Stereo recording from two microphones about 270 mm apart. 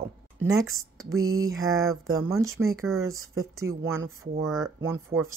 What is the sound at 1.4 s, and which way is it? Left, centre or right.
Speech, centre.